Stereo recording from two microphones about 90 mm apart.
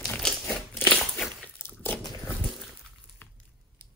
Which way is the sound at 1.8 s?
20° left (ahead or behind).